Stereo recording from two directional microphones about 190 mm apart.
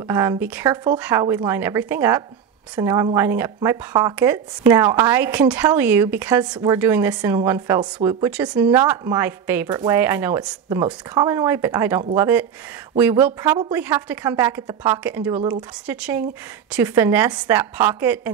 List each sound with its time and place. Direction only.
0.1 s speech: 15° right (ahead or behind)
8.3 s speech: 5° right (ahead or behind)